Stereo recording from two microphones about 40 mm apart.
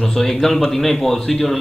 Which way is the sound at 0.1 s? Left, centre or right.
Centre.